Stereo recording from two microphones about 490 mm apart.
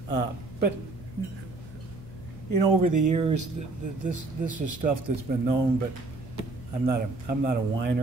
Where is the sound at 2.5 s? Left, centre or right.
Right.